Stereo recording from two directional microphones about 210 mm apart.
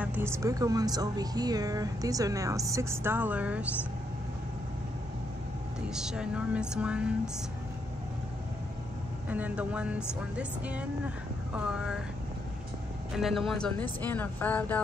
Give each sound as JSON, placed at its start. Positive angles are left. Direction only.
{"t": 0.0, "sound": "speech", "side_deg": -10}
{"t": 5.9, "sound": "speech", "side_deg": -5}
{"t": 9.3, "sound": "speech", "side_deg": -5}
{"t": 13.1, "sound": "a woman's voice", "side_deg": 0}